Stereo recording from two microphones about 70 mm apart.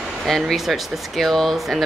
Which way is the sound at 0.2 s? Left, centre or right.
Centre.